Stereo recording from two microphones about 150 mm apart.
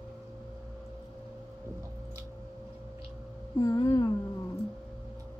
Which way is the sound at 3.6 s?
20° left (ahead or behind).